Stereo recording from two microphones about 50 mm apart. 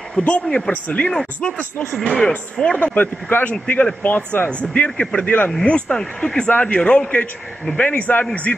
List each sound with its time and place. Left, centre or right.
0.2 s a man's voice: left
2.8 s a man's voice: left